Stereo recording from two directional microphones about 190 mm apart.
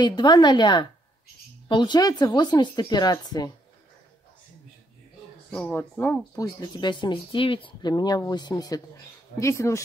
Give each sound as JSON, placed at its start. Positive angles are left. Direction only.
{"t": 0.0, "sound": "speech", "side_deg": 25}
{"t": 5.5, "sound": "speech", "side_deg": 5}
{"t": 6.4, "sound": "speech", "side_deg": 25}